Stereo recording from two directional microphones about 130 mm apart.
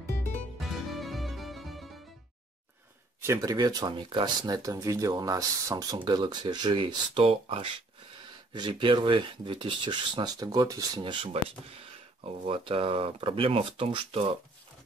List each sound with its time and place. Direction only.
0.6 s music: centre (ahead or behind)
3.2 s speech: 25° right (ahead or behind); by 14.3 s 45° right (ahead or behind)